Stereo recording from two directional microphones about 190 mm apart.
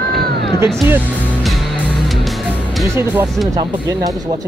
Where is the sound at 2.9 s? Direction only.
10° right (ahead or behind).